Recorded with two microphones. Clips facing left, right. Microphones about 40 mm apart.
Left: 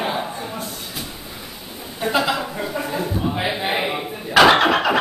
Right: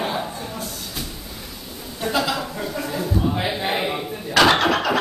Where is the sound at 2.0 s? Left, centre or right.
Centre.